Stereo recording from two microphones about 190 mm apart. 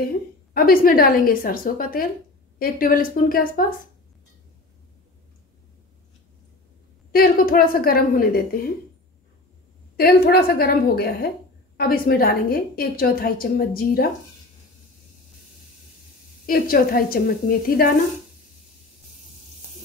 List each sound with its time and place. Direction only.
0.6 s a woman's voice: 50° left (ahead or behind)
7.1 s a woman's voice: 50° left (ahead or behind)
9.9 s a woman's voice: 55° left (ahead or behind)
16.4 s a woman's voice: 50° left (ahead or behind)